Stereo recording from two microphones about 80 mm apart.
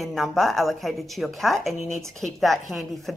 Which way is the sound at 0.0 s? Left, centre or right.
Centre.